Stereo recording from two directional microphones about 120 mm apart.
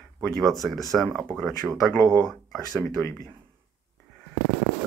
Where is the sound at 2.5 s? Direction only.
Centre (ahead or behind).